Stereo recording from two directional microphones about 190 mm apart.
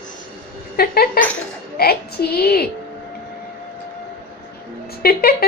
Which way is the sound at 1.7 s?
55° left (ahead or behind).